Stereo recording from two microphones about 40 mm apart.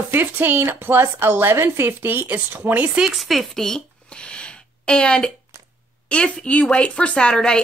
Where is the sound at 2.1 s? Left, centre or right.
Right.